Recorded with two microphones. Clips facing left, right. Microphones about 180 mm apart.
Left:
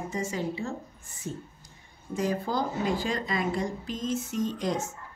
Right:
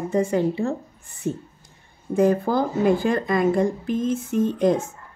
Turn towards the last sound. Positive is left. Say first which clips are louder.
# right 10 dB
turn(degrees=-55)  # may be behind; listen again after turning